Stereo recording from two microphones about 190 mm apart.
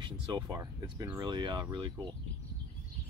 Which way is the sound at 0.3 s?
20° right (ahead or behind).